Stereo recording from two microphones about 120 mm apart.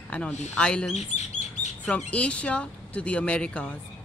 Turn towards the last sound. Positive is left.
turn(degrees=10)  # may be behind; listen again after turning